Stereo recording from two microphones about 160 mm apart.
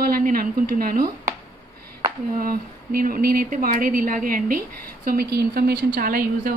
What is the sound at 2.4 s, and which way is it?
A woman's voice, 65° right (ahead or behind).